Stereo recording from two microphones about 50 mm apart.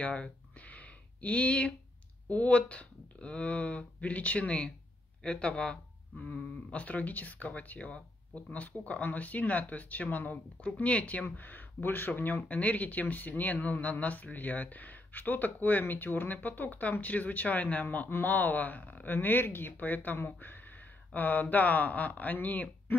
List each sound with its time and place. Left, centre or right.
0.6 s a sound: left
2.2 s speech: left
5.6 s a sound: centre
6.7 s speech: left
11.2 s speech: left
12.4 s speech: left